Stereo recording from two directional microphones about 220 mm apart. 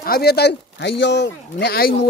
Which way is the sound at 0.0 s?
45° left (ahead or behind).